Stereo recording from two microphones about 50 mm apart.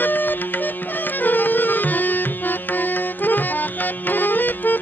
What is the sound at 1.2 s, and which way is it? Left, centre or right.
Music, left.